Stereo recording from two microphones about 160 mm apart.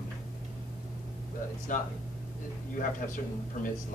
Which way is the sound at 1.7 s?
55° left (ahead or behind).